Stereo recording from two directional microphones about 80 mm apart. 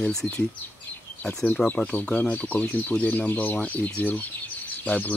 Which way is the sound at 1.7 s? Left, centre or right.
Centre.